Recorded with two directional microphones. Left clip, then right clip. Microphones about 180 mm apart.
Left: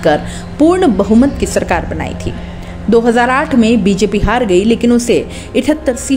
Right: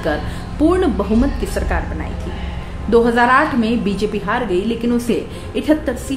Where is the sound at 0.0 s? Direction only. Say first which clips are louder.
Left 9 dB; 35° left (ahead or behind).